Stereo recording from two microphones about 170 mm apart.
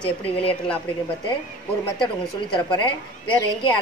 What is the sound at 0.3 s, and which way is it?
Speech, 35° left (ahead or behind).